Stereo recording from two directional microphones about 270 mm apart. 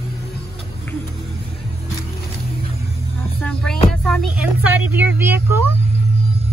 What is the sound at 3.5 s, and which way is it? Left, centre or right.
Hum, centre.